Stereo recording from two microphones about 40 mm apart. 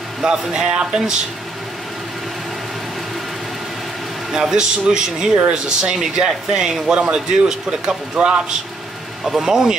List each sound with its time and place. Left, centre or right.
0.2 s a man's voice: centre
4.4 s a man's voice: centre
9.2 s a man's voice: centre